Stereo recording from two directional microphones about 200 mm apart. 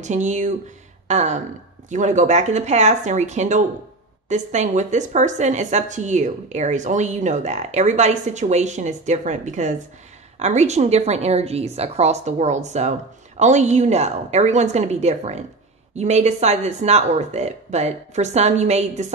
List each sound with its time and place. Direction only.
0.0 s speech: 35° right (ahead or behind)
1.0 s a sound: 35° right (ahead or behind)
1.9 s speech: 40° right (ahead or behind)